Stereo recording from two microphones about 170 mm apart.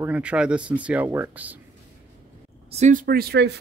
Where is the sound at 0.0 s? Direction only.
5° right (ahead or behind).